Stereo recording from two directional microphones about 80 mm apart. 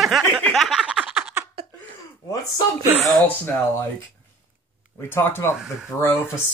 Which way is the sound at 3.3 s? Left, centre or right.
Left.